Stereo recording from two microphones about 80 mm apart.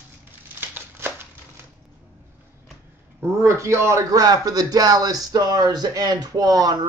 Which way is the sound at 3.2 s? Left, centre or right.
Right.